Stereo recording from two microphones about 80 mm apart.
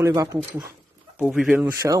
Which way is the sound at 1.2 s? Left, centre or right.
Centre.